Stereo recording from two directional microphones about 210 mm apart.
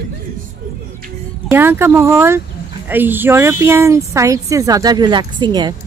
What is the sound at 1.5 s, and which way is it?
A woman's voice, 10° right (ahead or behind).